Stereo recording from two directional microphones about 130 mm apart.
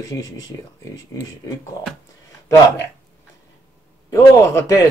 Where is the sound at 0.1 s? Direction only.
30° left (ahead or behind).